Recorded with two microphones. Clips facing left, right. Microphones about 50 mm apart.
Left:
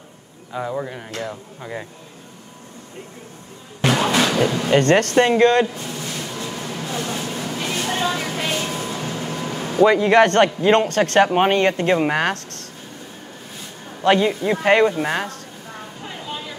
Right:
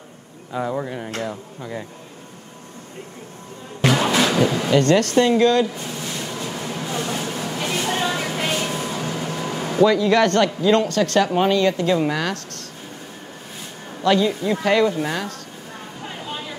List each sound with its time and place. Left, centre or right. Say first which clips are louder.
0.5 s speech: right 1 dB; centre
1.6 s speech: left 1 dB; centre
3.9 s music: left 1 dB; centre
4.6 s a man's voice: left 2 dB; left
5.9 s a sound: even; centre
6.3 s vehicle: right 1 dB; centre
8.0 s a sound: even; centre
8.5 s vehicle: even; centre
9.4 s air conditioning: right 1 dB; centre
9.8 s a man's voice: left 3 dB; left
14.0 s a man's voice: left 1 dB; left
16.0 s a sound: right 1 dB; centre